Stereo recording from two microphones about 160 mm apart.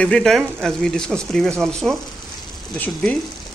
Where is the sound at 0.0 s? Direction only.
5° left (ahead or behind).